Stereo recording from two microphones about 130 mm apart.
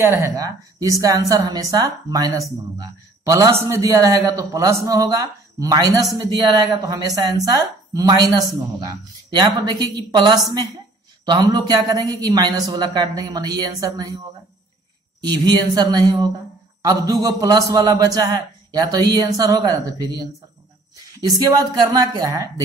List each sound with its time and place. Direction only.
0.0 s a man's voice: 25° right (ahead or behind)
15.2 s a woman's voice: 35° right (ahead or behind)